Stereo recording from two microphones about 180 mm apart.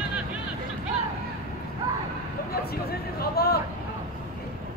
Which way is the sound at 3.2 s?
60° left (ahead or behind).